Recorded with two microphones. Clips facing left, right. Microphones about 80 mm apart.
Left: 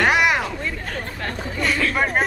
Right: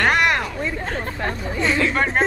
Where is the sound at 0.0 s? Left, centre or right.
Centre.